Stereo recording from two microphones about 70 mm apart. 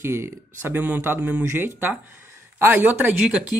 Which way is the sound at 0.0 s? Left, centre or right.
Right.